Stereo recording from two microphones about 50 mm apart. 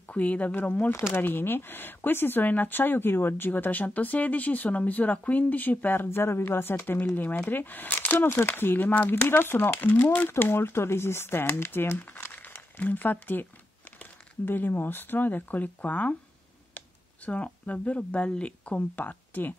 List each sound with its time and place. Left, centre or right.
0.1 s speech: left
1.1 s speech: left
6.0 s a woman's voice: left
8.3 s a woman's voice: left
9.3 s a woman's voice: left
10.3 s speech: left
16.7 s a sound: left
18.4 s speech: left
18.9 s speech: left